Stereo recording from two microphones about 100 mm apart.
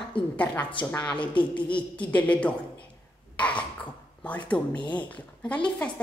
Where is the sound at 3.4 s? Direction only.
15° left (ahead or behind).